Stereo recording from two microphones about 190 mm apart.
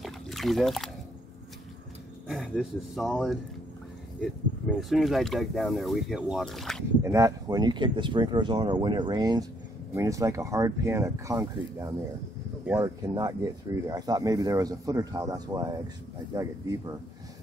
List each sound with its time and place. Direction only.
0.0 s dog: centre (ahead or behind)
2.2 s speech: centre (ahead or behind)
7.0 s speech: 15° right (ahead or behind)